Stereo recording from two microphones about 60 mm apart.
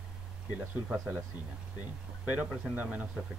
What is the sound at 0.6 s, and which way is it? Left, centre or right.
Speech, right.